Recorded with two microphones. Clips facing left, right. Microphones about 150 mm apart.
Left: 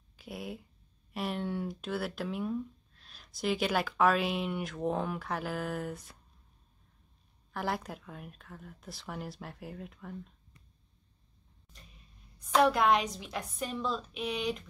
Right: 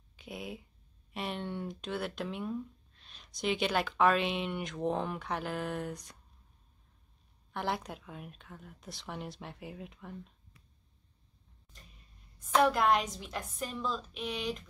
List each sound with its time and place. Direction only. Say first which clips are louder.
0.1 s speech: left 1 dB; centre (ahead or behind)
7.5 s speech: even; centre (ahead or behind)
12.4 s speech: left 1 dB; centre (ahead or behind)